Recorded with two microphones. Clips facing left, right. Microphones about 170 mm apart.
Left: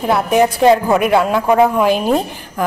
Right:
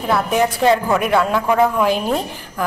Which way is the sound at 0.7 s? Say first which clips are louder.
Left 3 dB; 15° left (ahead or behind).